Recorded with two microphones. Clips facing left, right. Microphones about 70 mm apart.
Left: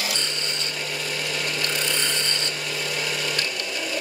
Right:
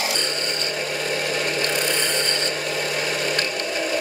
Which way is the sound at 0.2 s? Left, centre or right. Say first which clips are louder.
Right 4 dB; right.